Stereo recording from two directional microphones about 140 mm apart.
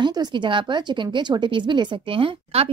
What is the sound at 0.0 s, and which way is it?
Speech, 35° right (ahead or behind).